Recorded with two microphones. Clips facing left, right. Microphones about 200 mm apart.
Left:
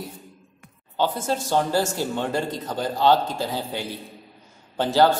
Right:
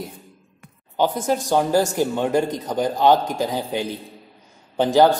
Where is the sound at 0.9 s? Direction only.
15° right (ahead or behind).